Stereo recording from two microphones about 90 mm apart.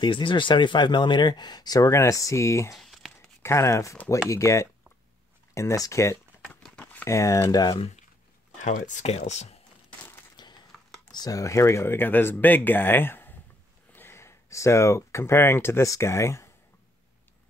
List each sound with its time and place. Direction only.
0.0 s speech: 65° left (ahead or behind)
1.9 s speech: 35° left (ahead or behind)
2.7 s tearing: centre (ahead or behind)
3.4 s speech: 30° left (ahead or behind)
6.5 s typing: 15° left (ahead or behind)
7.1 s speech: 35° left (ahead or behind)
10.3 s a sound: 55° left (ahead or behind)
11.1 s speech: 45° left (ahead or behind)